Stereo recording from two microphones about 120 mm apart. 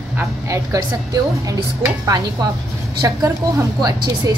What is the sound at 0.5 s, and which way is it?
A woman's voice, 30° right (ahead or behind).